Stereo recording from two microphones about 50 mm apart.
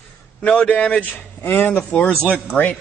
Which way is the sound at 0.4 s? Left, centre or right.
Left.